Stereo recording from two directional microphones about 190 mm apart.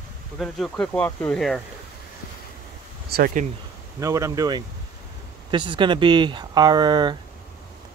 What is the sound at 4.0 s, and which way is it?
Speech, 15° right (ahead or behind).